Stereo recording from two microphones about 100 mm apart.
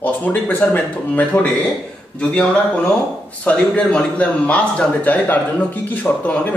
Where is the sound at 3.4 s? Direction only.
10° left (ahead or behind).